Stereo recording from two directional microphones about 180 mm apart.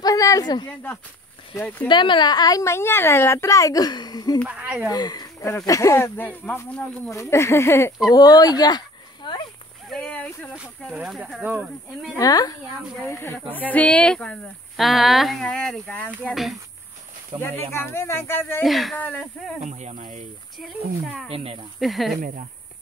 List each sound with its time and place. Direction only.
0.0 s a sound: 20° left (ahead or behind)
1.5 s speech: 10° left (ahead or behind)
1.9 s a woman's voice: 25° left (ahead or behind)
4.5 s speech: 10° right (ahead or behind)
4.8 s speech: 20° left (ahead or behind)
9.8 s speech: 5° left (ahead or behind)
10.5 s speech: 5° right (ahead or behind)
12.2 s a woman's voice: 20° left (ahead or behind); by 16.5 s centre (ahead or behind)
17.4 s speech: 10° left (ahead or behind)
18.6 s speech: centre (ahead or behind)
19.6 s speech: 40° right (ahead or behind)
20.5 s speech: centre (ahead or behind)
22.2 s speech: 45° right (ahead or behind)